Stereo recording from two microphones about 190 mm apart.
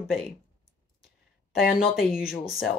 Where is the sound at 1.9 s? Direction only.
5° right (ahead or behind).